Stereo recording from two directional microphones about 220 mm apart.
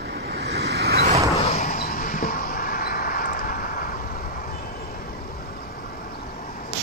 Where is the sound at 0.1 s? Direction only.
45° right (ahead or behind).